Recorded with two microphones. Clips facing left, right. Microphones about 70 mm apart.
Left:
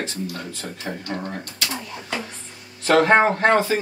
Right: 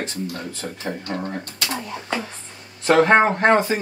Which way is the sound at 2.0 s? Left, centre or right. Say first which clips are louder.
Right 3 dB; right.